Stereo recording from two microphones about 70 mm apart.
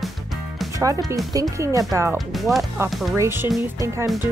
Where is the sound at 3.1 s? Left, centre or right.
Right.